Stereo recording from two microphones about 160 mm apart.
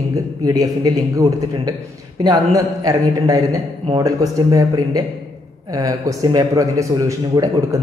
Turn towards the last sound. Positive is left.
turn(degrees=-20)  # may be behind; listen again after turning